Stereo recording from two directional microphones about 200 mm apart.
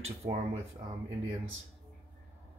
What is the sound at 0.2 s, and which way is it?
Speech, 40° right (ahead or behind).